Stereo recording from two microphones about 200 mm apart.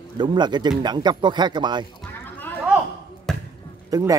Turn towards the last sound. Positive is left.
turn(degrees=-15)  # may be behind; listen again after turning